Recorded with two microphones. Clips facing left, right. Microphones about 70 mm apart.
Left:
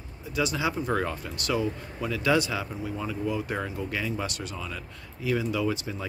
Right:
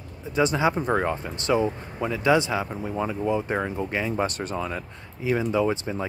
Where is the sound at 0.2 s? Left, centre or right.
Right.